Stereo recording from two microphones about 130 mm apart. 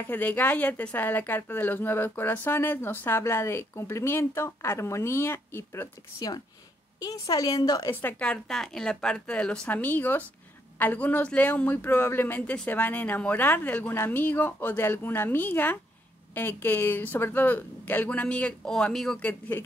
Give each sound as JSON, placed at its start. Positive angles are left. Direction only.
{"t": 0.0, "sound": "a woman's voice", "side_deg": 15}
{"t": 7.9, "sound": "speech", "side_deg": 15}